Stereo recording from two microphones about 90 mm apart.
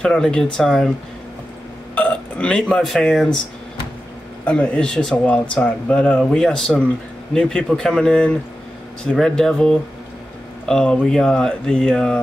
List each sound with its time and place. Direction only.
0.0 s speech: 10° left (ahead or behind)
2.0 s burping: 10° left (ahead or behind)
2.7 s speech: 5° left (ahead or behind)
4.5 s speech: 15° left (ahead or behind)